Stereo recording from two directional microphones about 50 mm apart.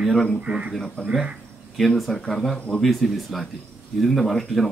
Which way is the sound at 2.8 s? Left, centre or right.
Centre.